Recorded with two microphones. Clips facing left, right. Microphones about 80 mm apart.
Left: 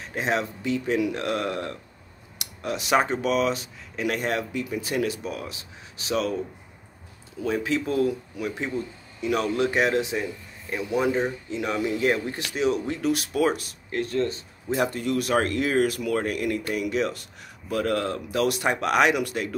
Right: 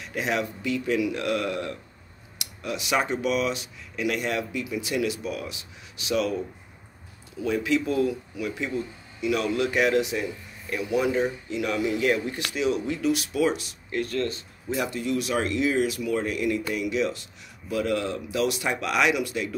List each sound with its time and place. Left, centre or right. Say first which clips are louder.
0.0 s speech: left 1 dB; left
7.4 s speech: right 1 dB; left
14.0 s speech: left 2 dB; left
14.8 s speech: left 2 dB; left